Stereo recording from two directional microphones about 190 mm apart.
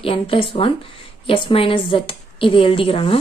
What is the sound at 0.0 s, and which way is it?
A woman's voice, 30° left (ahead or behind).